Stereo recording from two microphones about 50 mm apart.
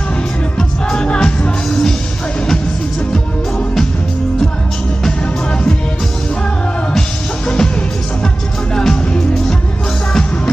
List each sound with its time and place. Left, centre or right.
0.6 s music: centre
1.0 s music: left
1.7 s music: centre
3.1 s music: centre
5.0 s music: centre
6.9 s music: centre
8.7 s music: centre